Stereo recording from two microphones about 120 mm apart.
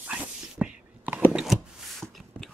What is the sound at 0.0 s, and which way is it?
Whispering, 10° right (ahead or behind).